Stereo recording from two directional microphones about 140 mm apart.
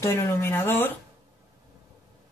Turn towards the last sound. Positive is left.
turn(degrees=15)  # may be behind; listen again after turning